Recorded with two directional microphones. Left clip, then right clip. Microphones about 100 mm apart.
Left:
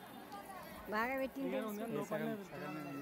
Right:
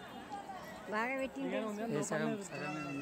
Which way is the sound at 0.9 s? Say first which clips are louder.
Right 1 dB; 45° left (ahead or behind).